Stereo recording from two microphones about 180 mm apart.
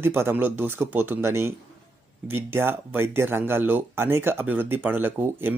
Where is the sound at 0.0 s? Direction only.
15° right (ahead or behind).